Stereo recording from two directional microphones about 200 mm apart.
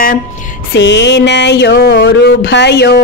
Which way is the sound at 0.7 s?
60° left (ahead or behind).